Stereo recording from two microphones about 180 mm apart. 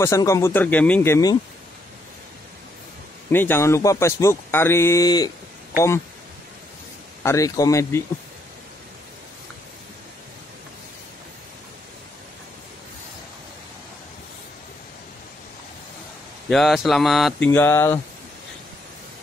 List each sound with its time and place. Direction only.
0.0 s speech: 15° left (ahead or behind)
3.3 s speech: 10° left (ahead or behind)
7.2 s speech: 20° left (ahead or behind)
16.4 s speech: centre (ahead or behind)
17.5 s speech: 10° left (ahead or behind)